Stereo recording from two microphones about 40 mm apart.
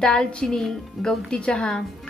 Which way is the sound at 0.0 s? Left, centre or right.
Centre.